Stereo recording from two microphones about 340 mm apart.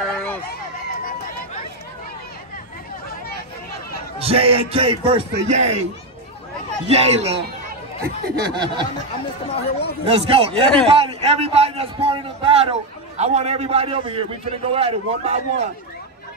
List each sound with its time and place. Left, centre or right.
0.0 s a sound: centre
4.2 s a man's voice: centre
6.9 s a man's voice: centre
9.5 s speech: centre
10.0 s a man's voice: centre
10.5 s speech: centre
10.9 s a man's voice: centre